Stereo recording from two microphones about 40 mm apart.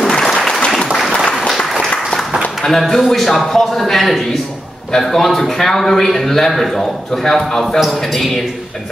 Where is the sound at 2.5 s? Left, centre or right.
Centre.